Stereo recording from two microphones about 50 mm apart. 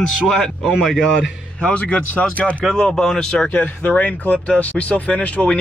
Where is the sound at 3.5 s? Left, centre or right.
Left.